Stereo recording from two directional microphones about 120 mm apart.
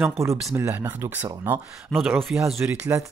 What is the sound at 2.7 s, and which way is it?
Speech, 25° right (ahead or behind).